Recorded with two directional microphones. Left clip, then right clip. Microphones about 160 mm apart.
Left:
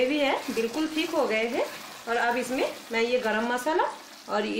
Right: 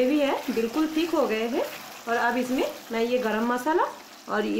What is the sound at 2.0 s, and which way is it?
Frying, 70° right (ahead or behind).